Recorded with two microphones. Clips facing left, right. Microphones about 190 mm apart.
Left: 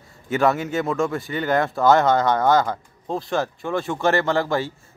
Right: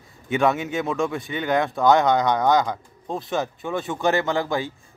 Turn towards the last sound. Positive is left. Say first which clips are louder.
# left 2 dB
turn(degrees=0)  # may be behind; listen again after turning